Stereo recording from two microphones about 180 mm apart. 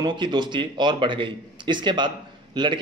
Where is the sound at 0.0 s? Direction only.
25° right (ahead or behind).